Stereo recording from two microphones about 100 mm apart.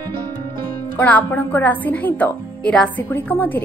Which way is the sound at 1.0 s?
15° left (ahead or behind).